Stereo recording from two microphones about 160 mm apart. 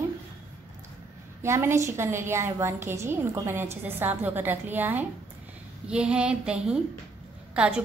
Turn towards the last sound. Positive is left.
turn(degrees=-5)  # may be behind; listen again after turning